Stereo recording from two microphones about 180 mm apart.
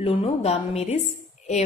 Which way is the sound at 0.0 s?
35° left (ahead or behind).